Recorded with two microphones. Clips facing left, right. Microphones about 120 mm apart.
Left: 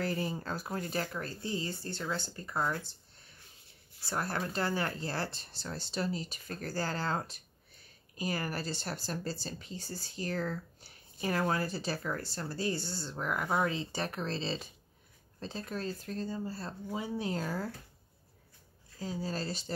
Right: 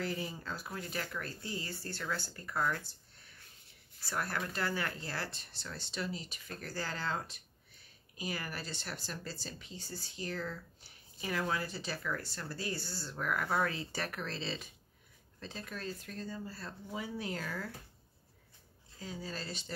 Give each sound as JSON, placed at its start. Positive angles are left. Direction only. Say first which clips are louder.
{"t": 0.0, "sound": "speech", "louder": "left 4 dB", "side_deg": 45}
{"t": 4.0, "sound": "speech", "louder": "left 3 dB", "side_deg": 30}
{"t": 18.9, "sound": "speech", "louder": "left 6 dB", "side_deg": 35}